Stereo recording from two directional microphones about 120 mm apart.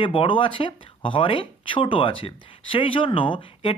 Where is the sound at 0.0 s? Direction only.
45° left (ahead or behind).